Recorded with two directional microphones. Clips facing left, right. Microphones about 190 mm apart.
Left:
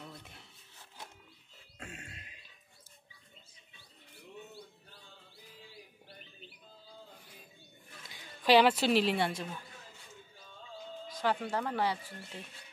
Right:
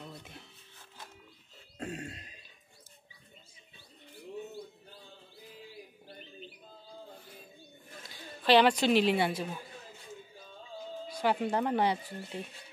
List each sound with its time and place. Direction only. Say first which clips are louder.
1.8 s a sound: right 10 dB; 35° right (ahead or behind)
8.5 s a woman's voice: right 1 dB; 5° left (ahead or behind)
11.1 s speech: right 3 dB; 15° right (ahead or behind)